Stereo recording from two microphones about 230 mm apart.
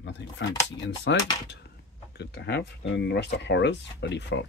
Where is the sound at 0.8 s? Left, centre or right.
Left.